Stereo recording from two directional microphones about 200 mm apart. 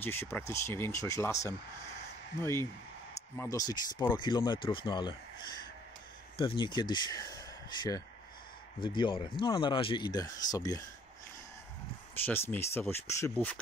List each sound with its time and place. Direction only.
0.0 s speech: 10° left (ahead or behind)
6.3 s speech: 25° left (ahead or behind)
8.8 s speech: 25° left (ahead or behind)
12.3 s speech: 10° left (ahead or behind)